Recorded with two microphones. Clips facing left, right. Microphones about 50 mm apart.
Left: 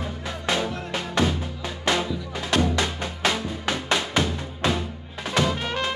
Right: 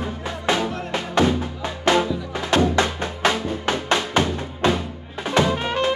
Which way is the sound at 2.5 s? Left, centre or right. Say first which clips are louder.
Right 4 dB; right.